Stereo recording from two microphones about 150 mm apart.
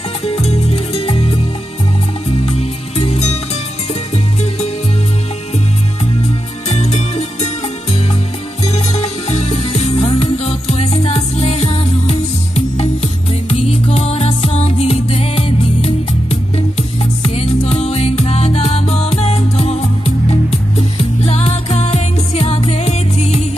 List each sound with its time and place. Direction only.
0.2 s music: 40° left (ahead or behind)
2.4 s music: 45° left (ahead or behind)
6.7 s music: 45° left (ahead or behind)
8.6 s music: 45° left (ahead or behind)